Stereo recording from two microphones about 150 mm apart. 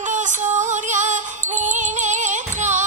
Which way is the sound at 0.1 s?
55° right (ahead or behind).